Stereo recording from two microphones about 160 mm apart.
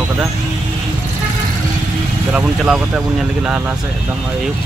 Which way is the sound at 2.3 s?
5° right (ahead or behind).